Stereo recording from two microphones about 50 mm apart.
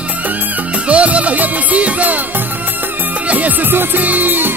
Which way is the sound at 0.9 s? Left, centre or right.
Right.